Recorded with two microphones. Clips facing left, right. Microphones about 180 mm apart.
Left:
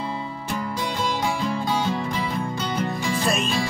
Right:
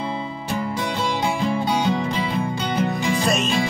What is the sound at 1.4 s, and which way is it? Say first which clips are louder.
Music: right 3 dB; 20° right (ahead or behind).